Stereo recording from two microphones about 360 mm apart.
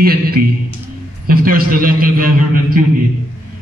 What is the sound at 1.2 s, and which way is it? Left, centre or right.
A man's voice, right.